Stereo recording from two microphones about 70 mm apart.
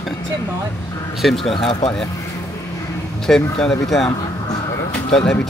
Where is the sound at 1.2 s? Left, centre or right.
Centre.